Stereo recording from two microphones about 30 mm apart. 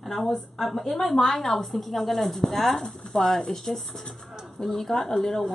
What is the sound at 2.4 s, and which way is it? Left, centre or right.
Speech, centre.